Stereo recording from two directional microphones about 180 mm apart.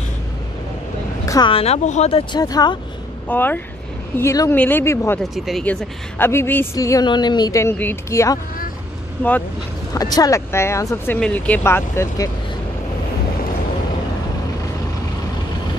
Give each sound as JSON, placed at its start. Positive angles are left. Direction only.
{"t": 1.2, "sound": "vehicle", "side_deg": 20}
{"t": 1.5, "sound": "speech", "side_deg": 35}
{"t": 3.3, "sound": "a woman's voice", "side_deg": 10}
{"t": 5.2, "sound": "a woman's voice", "side_deg": 0}
{"t": 9.9, "sound": "a woman's voice", "side_deg": 20}